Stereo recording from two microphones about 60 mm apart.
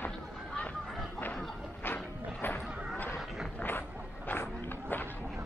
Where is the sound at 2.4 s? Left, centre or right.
Left.